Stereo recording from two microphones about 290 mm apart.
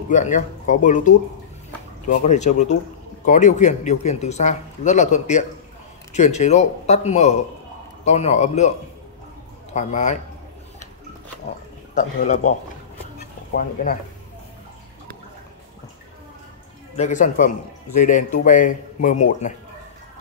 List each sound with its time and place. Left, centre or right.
0.1 s speech: left
9.8 s speech: left
11.9 s speech: left
16.9 s speech: left